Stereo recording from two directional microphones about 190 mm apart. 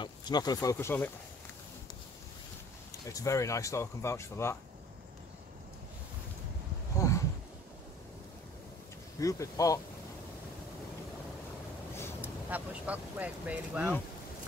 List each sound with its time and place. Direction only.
0.0 s speech: 20° left (ahead or behind)
3.1 s speech: 15° left (ahead or behind)
7.0 s a sound: 15° left (ahead or behind)
9.2 s speech: 15° left (ahead or behind)
12.2 s speech: 10° right (ahead or behind)